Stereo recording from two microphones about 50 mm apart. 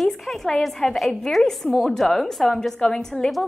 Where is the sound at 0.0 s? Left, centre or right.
Centre.